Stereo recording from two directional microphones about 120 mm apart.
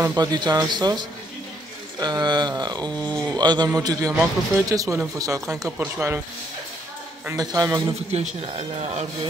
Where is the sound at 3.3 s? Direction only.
35° right (ahead or behind).